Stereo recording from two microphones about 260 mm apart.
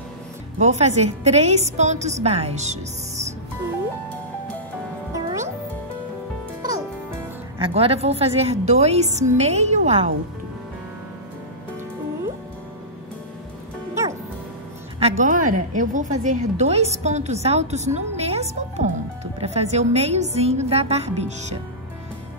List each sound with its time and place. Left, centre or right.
0.6 s a woman's voice: right
5.1 s music: centre
7.5 s a woman's voice: right
15.0 s a woman's voice: right